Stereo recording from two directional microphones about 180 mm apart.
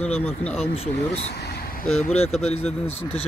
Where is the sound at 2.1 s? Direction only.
35° left (ahead or behind).